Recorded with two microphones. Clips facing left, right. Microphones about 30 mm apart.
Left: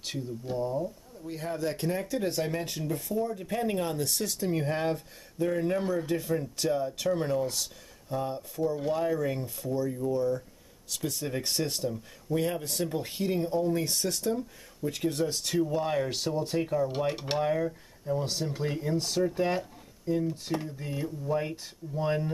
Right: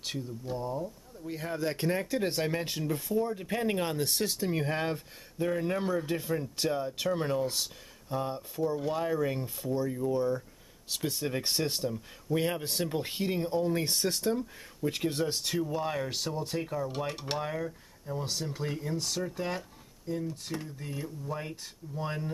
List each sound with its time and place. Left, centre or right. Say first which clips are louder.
0.0 s speech: left 1 dB; centre; by 15.3 s right
15.3 s speech: left 3 dB; centre
15.6 s speech: left 7 dB; centre